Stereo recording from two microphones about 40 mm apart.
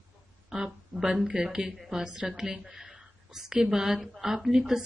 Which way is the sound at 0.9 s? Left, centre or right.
Centre.